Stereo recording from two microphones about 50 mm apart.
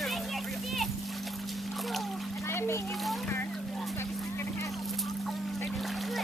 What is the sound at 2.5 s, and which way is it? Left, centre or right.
Splash, left.